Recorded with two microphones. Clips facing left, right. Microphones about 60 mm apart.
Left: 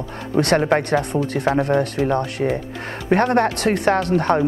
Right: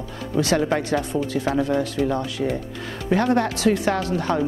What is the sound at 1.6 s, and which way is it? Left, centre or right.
Speech, left.